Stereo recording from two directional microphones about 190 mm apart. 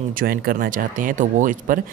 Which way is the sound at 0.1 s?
50° right (ahead or behind).